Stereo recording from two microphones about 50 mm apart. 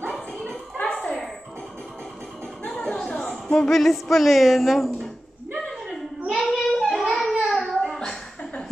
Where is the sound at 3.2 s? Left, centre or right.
Centre.